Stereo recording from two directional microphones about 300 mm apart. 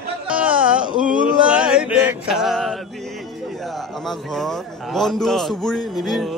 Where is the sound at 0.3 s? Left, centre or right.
Centre.